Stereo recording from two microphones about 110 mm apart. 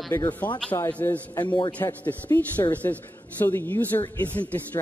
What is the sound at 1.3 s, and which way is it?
Speech, 45° left (ahead or behind).